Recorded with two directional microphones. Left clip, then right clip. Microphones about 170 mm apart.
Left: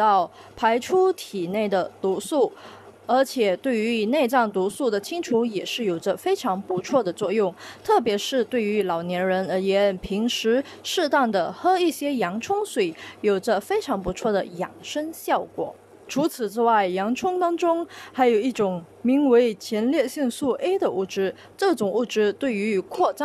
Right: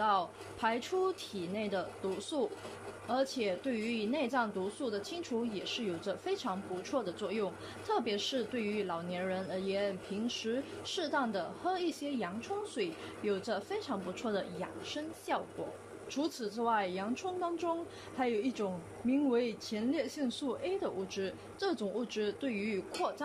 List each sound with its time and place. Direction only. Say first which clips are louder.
0.0 s speech: left 12 dB; 40° left (ahead or behind)